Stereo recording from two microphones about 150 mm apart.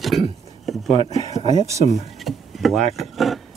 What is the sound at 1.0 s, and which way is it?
Speech, 45° right (ahead or behind).